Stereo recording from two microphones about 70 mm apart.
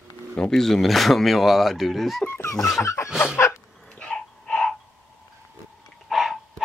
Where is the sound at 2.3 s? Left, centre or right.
Left.